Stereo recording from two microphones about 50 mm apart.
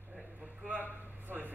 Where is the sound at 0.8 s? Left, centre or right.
Right.